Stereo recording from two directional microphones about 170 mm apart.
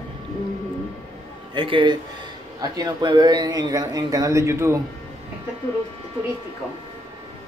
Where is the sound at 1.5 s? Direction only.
30° right (ahead or behind).